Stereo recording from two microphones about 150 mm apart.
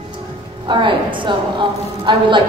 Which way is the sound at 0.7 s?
35° right (ahead or behind).